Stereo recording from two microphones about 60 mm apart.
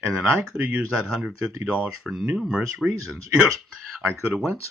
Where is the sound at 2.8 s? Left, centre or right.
Centre.